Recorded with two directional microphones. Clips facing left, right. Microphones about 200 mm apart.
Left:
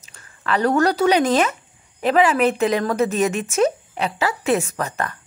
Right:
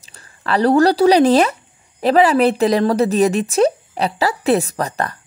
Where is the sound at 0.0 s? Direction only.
35° right (ahead or behind).